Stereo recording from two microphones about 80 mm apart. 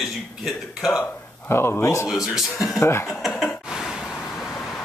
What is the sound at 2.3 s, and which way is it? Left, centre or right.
Speech, centre.